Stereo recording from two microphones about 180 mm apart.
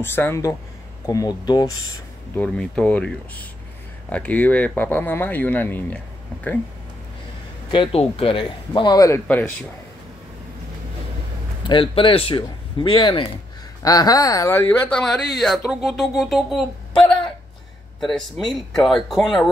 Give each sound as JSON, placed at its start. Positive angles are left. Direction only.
{"t": 0.0, "sound": "speech", "side_deg": 10}
{"t": 2.3, "sound": "speech", "side_deg": 5}
{"t": 7.7, "sound": "speech", "side_deg": 30}
{"t": 11.6, "sound": "speech", "side_deg": 30}